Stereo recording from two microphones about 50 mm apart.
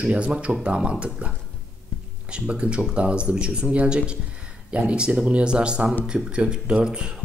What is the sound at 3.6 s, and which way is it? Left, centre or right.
Speech, right.